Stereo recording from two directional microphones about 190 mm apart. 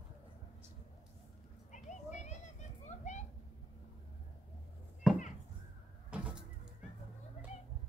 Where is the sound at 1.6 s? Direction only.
40° left (ahead or behind).